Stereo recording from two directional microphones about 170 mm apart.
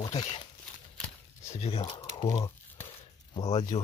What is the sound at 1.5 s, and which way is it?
Speech, 35° left (ahead or behind).